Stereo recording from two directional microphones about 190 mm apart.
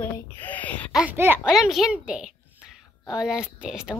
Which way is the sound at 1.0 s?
10° right (ahead or behind).